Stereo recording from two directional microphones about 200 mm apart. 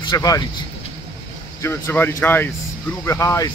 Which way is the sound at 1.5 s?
15° left (ahead or behind).